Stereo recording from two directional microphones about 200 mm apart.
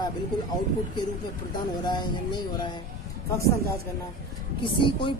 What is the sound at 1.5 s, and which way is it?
Speech, 20° left (ahead or behind).